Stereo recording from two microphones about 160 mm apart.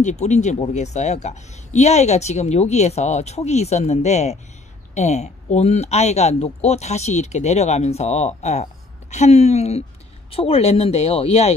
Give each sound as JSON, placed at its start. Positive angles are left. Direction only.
{"t": 0.0, "sound": "speech", "side_deg": 45}